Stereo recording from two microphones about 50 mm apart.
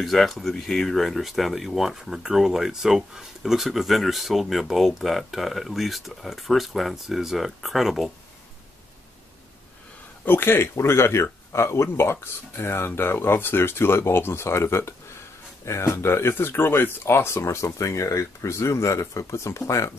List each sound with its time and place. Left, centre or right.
0.0 s speech: centre
10.2 s speech: left
15.6 s speech: left